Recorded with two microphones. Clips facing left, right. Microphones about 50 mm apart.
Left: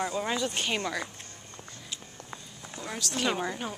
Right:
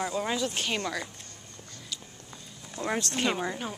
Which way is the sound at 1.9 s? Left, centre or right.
Left.